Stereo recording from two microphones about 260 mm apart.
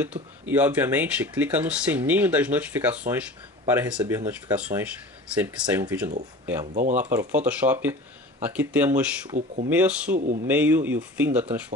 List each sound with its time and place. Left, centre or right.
0.0 s speech: centre
6.6 s speech: right
7.0 s speech: centre
10.1 s speech: right
10.4 s speech: centre